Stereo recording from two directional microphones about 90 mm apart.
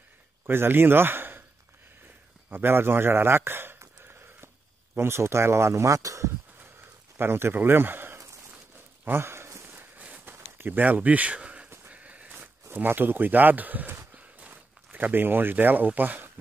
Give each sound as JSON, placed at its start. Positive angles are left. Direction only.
{"t": 0.5, "sound": "speech", "side_deg": -25}
{"t": 2.5, "sound": "a sound", "side_deg": -25}
{"t": 4.9, "sound": "speech", "side_deg": -30}
{"t": 9.0, "sound": "walk", "side_deg": -25}
{"t": 11.9, "sound": "a sound", "side_deg": -15}
{"t": 12.6, "sound": "speech", "side_deg": -20}